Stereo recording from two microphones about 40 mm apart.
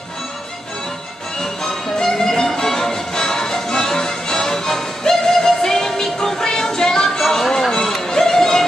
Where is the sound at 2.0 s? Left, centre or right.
Centre.